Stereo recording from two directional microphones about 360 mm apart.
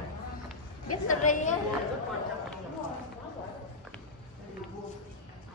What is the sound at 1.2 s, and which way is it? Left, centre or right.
Speech, left.